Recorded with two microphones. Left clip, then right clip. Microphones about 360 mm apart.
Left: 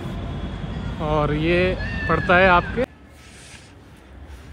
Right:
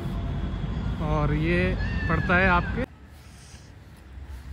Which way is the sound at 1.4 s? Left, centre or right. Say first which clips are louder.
Left 6 dB; centre.